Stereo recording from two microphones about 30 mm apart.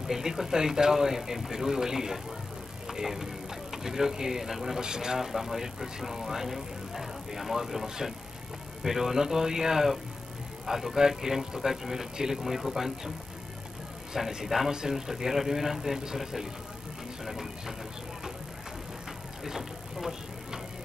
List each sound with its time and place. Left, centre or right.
0.0 s speech: centre
4.7 s speech: centre
5.2 s speech: centre
14.1 s speech: centre
14.7 s speech: centre
17.2 s speech: centre
19.4 s vehicle: centre